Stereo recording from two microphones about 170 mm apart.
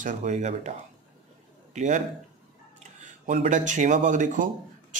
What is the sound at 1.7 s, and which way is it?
Speech, 45° right (ahead or behind).